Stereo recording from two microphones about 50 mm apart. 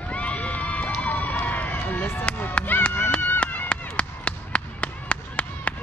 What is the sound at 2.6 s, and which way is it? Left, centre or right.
Run, left.